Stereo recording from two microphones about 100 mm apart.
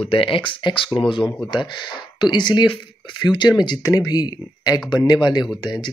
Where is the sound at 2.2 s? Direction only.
45° left (ahead or behind).